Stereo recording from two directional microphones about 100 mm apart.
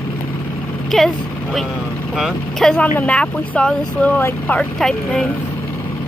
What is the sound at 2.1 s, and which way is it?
Speech, 5° right (ahead or behind).